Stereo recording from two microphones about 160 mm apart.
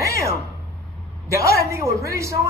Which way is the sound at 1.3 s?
20° right (ahead or behind).